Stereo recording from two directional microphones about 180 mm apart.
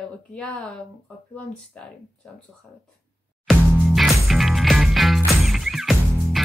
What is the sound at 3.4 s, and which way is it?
Music, centre (ahead or behind).